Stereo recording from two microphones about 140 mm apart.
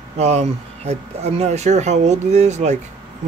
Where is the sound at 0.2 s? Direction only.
50° right (ahead or behind).